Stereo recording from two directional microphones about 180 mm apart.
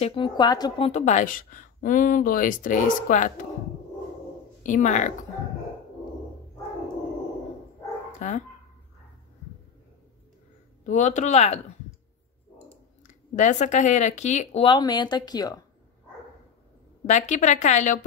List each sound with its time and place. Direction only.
0.0 s a woman's voice: 30° left (ahead or behind); by 3.3 s 45° left (ahead or behind)
4.6 s a woman's voice: 45° left (ahead or behind)
8.2 s a woman's voice: 45° left (ahead or behind)
10.8 s speech: 40° left (ahead or behind)
13.0 s speech: 45° left (ahead or behind); by 15.6 s 20° left (ahead or behind)
17.0 s speech: 40° left (ahead or behind)